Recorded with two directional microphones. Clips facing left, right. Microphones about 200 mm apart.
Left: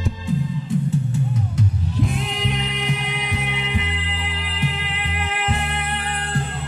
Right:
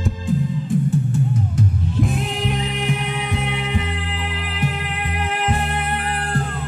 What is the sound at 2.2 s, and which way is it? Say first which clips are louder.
Music: right 2 dB; 55° right (ahead or behind).